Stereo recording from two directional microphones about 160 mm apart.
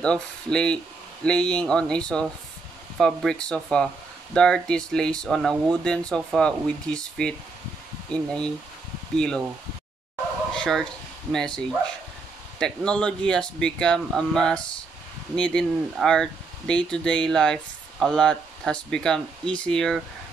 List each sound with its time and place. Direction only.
0.0 s speech: 5° left (ahead or behind)
10.5 s bow-wow: 5° left (ahead or behind)
11.3 s speech: 5° left (ahead or behind)